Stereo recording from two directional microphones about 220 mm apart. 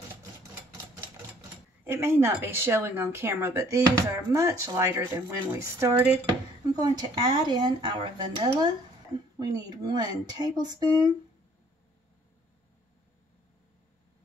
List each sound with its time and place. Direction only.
1.9 s speech: 10° right (ahead or behind)